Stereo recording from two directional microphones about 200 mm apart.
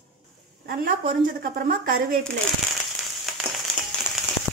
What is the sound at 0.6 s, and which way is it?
Speech, 45° right (ahead or behind).